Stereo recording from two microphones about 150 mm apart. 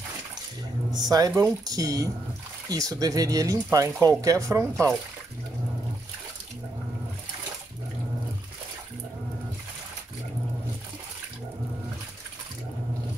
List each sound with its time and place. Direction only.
0.9 s speech: 25° right (ahead or behind)